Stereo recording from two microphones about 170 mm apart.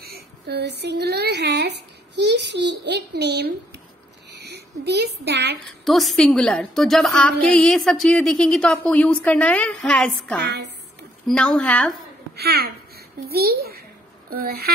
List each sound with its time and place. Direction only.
0.0 s speech: 70° right (ahead or behind)
4.3 s a sound: 75° right (ahead or behind)
5.9 s a woman's voice: centre (ahead or behind)
12.4 s a child's voice: 70° right (ahead or behind)